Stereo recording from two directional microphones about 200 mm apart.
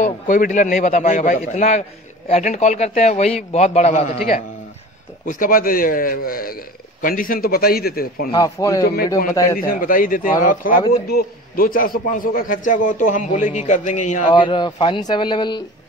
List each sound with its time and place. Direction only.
0.0 s a man's voice: 40° left (ahead or behind)
5.2 s a man's voice: 45° left (ahead or behind)
8.3 s speech: 20° left (ahead or behind)
9.6 s a man's voice: 45° left (ahead or behind)
14.3 s speech: 25° left (ahead or behind)